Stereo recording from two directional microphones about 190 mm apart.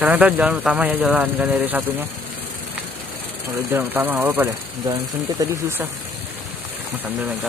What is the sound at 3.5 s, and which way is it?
Speech, 10° right (ahead or behind).